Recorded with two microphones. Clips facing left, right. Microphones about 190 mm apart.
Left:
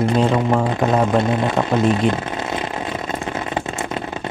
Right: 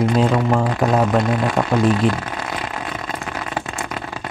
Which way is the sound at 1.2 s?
25° left (ahead or behind).